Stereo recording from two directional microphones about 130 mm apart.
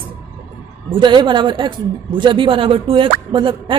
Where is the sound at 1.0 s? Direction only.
35° right (ahead or behind).